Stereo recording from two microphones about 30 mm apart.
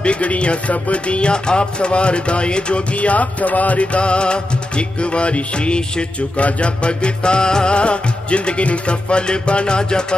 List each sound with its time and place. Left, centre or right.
0.0 s music: left
1.3 s music: left
3.1 s music: left